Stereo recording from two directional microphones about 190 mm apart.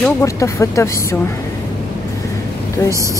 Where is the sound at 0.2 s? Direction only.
15° left (ahead or behind).